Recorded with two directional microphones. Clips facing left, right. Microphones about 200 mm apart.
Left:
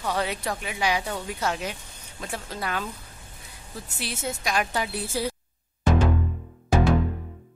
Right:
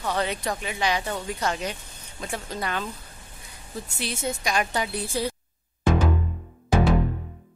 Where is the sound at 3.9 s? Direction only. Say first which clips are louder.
Right 2 dB; 5° left (ahead or behind).